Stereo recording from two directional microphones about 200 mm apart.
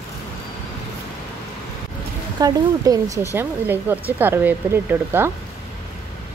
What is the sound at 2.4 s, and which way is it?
Speech, 20° right (ahead or behind).